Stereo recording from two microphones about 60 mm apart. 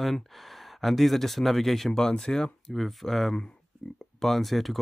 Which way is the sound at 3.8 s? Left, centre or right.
Left.